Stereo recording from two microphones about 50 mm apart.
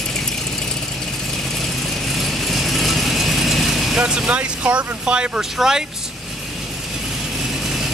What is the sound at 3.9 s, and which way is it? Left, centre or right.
Speech, centre.